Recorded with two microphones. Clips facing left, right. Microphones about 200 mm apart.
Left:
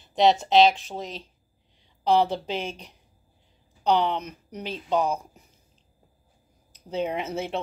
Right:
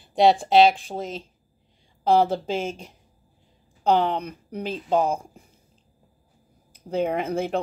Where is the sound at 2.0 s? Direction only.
45° right (ahead or behind).